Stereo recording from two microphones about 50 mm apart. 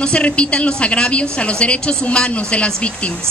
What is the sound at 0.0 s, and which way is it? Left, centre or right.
A woman's voice, left.